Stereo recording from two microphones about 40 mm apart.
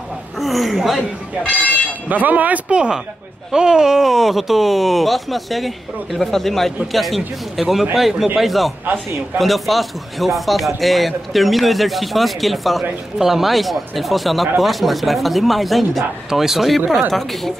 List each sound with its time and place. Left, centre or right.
0.4 s speech: centre
1.5 s speech: left
2.0 s speech: right
2.7 s speech: right; by 16.8 s centre
17.1 s speech: centre